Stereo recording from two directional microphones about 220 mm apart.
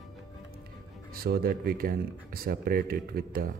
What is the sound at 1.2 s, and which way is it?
Speech, 45° right (ahead or behind).